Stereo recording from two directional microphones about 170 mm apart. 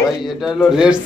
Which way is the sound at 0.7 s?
5° right (ahead or behind).